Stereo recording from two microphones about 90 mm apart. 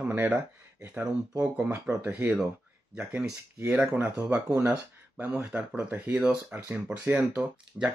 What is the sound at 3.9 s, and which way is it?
Speech, 15° right (ahead or behind).